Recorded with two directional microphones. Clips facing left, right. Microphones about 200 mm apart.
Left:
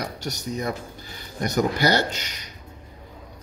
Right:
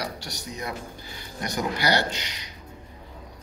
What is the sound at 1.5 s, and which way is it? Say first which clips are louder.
Speech: left 4 dB; 45° left (ahead or behind).